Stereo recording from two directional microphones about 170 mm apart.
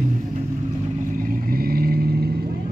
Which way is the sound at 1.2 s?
55° right (ahead or behind).